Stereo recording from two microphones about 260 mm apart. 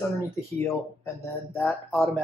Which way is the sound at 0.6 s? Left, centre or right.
Centre.